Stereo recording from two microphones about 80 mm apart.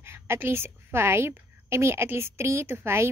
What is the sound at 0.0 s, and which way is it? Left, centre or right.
A woman's voice, right.